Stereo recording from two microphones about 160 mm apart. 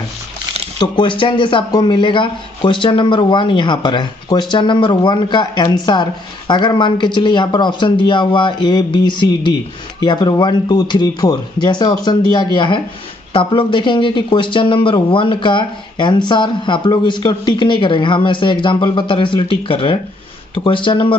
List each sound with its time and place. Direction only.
0.7 s speech: 30° left (ahead or behind)